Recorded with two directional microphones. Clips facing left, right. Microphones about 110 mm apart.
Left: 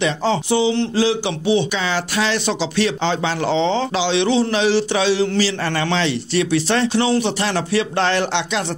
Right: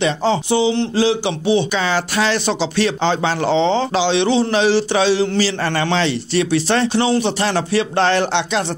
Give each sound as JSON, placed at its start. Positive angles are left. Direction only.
{"t": 0.0, "sound": "speech", "side_deg": -30}
{"t": 1.7, "sound": "speech", "side_deg": -40}